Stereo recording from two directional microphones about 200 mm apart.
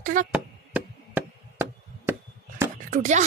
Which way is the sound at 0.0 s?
40° right (ahead or behind).